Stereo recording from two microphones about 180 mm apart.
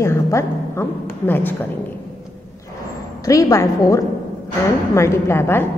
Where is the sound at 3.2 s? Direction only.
20° left (ahead or behind).